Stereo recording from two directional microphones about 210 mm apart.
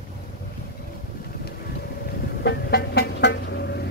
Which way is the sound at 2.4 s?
50° left (ahead or behind).